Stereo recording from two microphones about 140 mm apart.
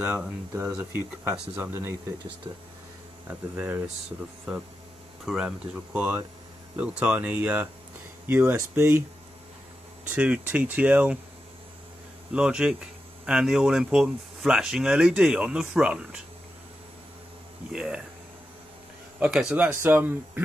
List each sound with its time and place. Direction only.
0.0 s speech: 10° right (ahead or behind)
0.5 s speech: 20° right (ahead or behind)
3.5 s speech: 10° right (ahead or behind)
5.2 s speech: 5° right (ahead or behind)
10.0 s speech: 10° right (ahead or behind)
12.3 s speech: 5° right (ahead or behind)
17.7 s speech: 5° right (ahead or behind)
19.1 s speech: 10° right (ahead or behind)